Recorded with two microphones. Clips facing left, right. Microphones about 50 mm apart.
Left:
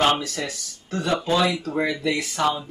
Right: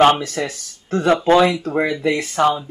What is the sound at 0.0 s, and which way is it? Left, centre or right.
Speech, right.